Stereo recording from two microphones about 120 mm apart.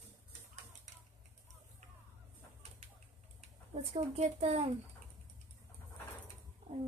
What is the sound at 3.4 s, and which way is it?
Speech, 65° right (ahead or behind).